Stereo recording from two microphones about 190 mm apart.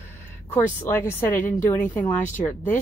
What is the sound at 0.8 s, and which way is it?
A woman's voice, 15° left (ahead or behind).